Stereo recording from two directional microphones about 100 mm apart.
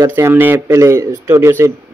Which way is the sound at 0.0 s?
25° right (ahead or behind).